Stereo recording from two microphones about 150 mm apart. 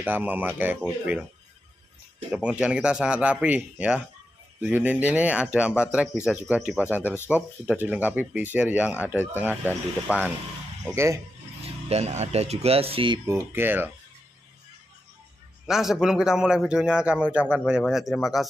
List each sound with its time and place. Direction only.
0.0 s speech: 10° right (ahead or behind)
2.3 s a man's voice: 5° right (ahead or behind)
7.0 s speech: 15° left (ahead or behind)
7.2 s speech: 10° right (ahead or behind)
11.6 s speech: 45° right (ahead or behind)
13.3 s speech: 15° right (ahead or behind)
15.6 s a man's voice: 5° right (ahead or behind)